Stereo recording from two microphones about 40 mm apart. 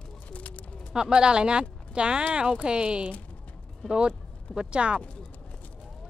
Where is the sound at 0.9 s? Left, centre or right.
Centre.